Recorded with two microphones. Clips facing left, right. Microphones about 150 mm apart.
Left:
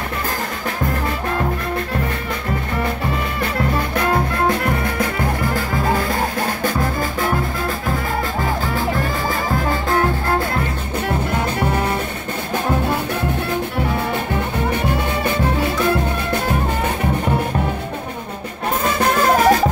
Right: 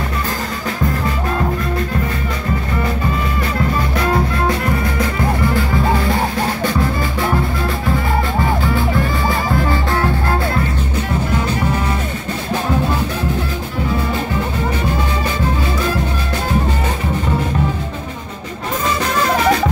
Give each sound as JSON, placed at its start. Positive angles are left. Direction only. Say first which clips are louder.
{"t": 3.7, "sound": "music", "louder": "right 2 dB", "side_deg": 55}
{"t": 14.9, "sound": "music", "louder": "even", "side_deg": 60}
{"t": 18.9, "sound": "music", "louder": "left 2 dB", "side_deg": 55}